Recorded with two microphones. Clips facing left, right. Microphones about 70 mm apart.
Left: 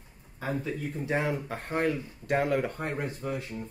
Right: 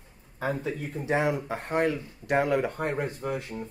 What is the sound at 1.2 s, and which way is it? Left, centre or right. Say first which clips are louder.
Speech: right 3 dB; right.